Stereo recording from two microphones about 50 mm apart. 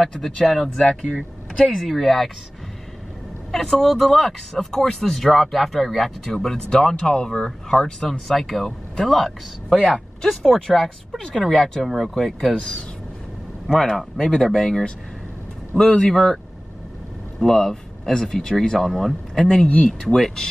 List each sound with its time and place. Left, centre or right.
0.0 s speech: centre
3.5 s speech: centre
17.4 s speech: centre
19.7 s speech: left
20.2 s speech: centre